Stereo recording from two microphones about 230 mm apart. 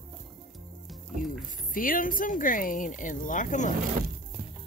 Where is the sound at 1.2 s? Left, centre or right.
Left.